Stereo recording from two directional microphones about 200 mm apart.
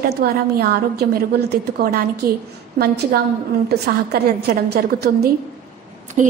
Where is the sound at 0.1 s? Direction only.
50° right (ahead or behind).